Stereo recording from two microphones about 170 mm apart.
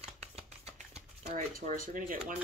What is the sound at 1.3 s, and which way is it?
Speech, 50° right (ahead or behind).